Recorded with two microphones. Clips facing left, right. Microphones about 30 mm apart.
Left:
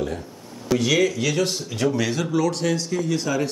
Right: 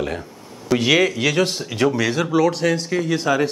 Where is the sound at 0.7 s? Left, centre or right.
Right.